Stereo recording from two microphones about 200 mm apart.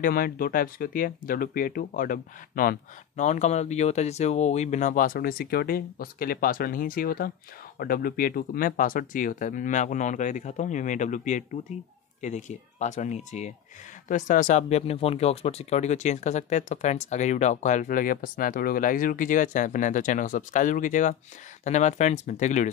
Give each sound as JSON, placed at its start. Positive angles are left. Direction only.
{"t": 0.0, "sound": "speech", "side_deg": 45}